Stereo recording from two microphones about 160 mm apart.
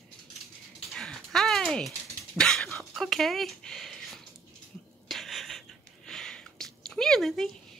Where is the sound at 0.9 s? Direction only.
Centre (ahead or behind).